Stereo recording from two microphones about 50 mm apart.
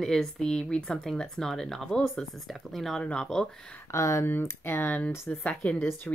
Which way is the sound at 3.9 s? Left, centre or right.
Left.